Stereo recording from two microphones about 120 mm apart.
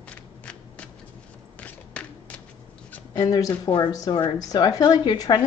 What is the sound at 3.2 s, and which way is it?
A woman's voice, 30° left (ahead or behind).